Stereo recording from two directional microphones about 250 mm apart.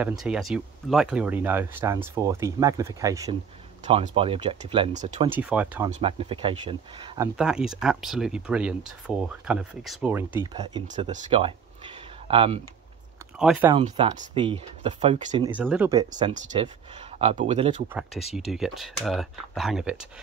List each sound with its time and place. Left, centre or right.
0.0 s speech: centre
3.8 s speech: right
5.3 s speech: centre
5.9 s speech: right
7.3 s speech: centre
11.1 s speech: right
13.4 s speech: centre
13.8 s speech: right
15.5 s speech: centre; by 17.8 s right
18.5 s speech: centre